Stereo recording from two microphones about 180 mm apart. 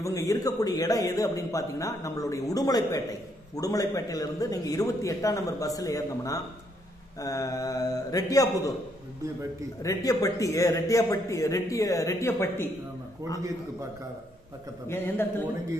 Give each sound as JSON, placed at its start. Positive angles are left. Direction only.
{"t": 0.0, "sound": "a man's voice", "side_deg": 15}
{"t": 9.8, "sound": "a man's voice", "side_deg": 20}
{"t": 14.9, "sound": "a man's voice", "side_deg": 10}